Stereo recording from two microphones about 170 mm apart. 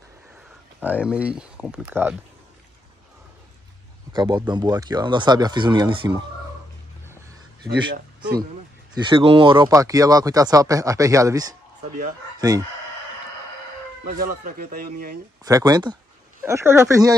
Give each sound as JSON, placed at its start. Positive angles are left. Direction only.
{"t": 0.7, "sound": "speech", "side_deg": -10}
{"t": 4.1, "sound": "speech", "side_deg": -25}
{"t": 8.9, "sound": "speech", "side_deg": -30}
{"t": 14.4, "sound": "speech", "side_deg": -60}
{"t": 15.4, "sound": "speech", "side_deg": -20}